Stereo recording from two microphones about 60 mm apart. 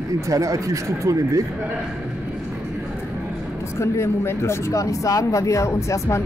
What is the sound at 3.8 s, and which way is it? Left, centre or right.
Speech, left.